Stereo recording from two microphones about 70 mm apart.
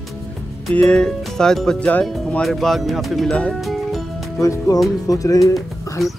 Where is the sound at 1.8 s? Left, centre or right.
Left.